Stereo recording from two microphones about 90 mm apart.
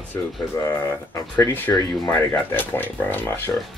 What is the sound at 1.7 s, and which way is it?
Speech, 30° left (ahead or behind).